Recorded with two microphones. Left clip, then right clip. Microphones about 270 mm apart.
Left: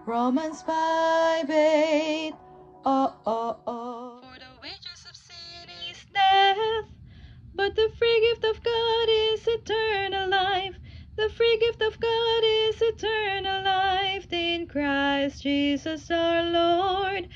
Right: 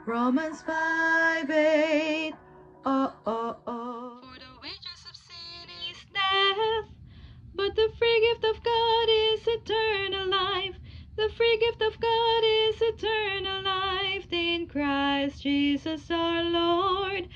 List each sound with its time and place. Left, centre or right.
0.1 s mantra: centre
0.7 s music: left
1.5 s music: left
2.8 s music: centre
3.3 s a sound: centre
4.6 s female singing: centre
7.5 s music: centre